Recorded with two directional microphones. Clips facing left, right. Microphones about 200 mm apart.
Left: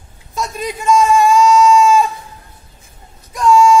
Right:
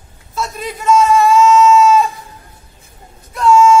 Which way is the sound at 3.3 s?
15° left (ahead or behind).